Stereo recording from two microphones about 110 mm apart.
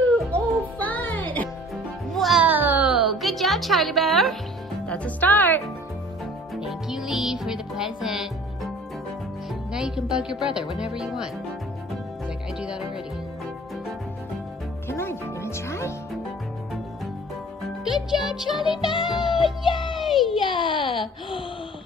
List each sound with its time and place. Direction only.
0.3 s music: 15° left (ahead or behind)
2.1 s music: centre (ahead or behind)
2.4 s music: 15° right (ahead or behind)
2.9 s music: centre (ahead or behind)
4.8 s speech: 10° left (ahead or behind)
6.5 s music: 5° right (ahead or behind)
9.7 s music: 5° right (ahead or behind)
12.5 s speech: 5° right (ahead or behind)
14.9 s speech: 20° left (ahead or behind)
17.8 s music: 5° right (ahead or behind)
19.8 s a sound: centre (ahead or behind)
20.3 s a child's voice: 50° left (ahead or behind)